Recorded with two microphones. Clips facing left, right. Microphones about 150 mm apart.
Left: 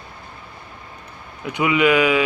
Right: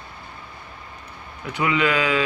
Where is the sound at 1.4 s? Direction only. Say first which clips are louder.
Left 4 dB; 15° left (ahead or behind).